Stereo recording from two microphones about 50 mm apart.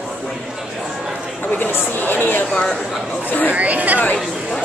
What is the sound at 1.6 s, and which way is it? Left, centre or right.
Speech, left.